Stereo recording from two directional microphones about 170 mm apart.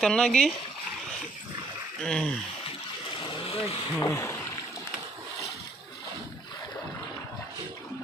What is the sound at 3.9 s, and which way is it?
Speech, 15° left (ahead or behind).